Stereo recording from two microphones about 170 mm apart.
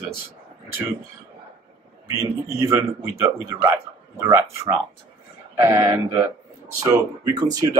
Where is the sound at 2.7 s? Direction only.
15° right (ahead or behind).